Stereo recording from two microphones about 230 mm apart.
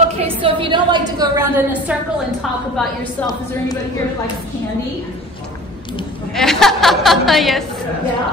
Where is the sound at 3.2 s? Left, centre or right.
Centre.